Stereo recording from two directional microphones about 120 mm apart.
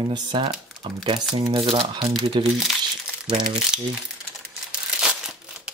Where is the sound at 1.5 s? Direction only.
55° right (ahead or behind).